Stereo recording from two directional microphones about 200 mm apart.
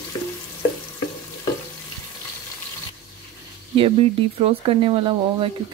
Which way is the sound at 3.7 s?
25° right (ahead or behind).